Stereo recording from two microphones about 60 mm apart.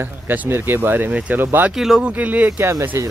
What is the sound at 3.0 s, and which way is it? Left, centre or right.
Speech, right.